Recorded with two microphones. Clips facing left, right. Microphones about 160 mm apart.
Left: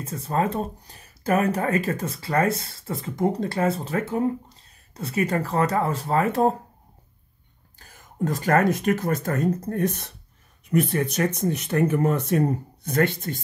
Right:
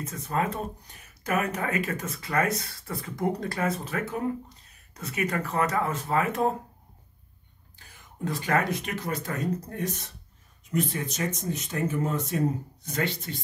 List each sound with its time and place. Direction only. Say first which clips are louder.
0.0 s speech: left 4 dB; 30° left (ahead or behind)
7.8 s speech: left 6 dB; 45° left (ahead or behind)